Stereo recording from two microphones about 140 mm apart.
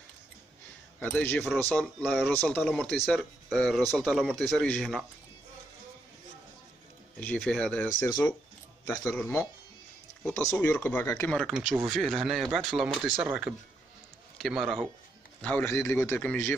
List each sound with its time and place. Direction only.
0.9 s speech: 10° left (ahead or behind)
7.2 s speech: 5° left (ahead or behind)
11.3 s speech: 5° left (ahead or behind)
15.4 s speech: 10° left (ahead or behind)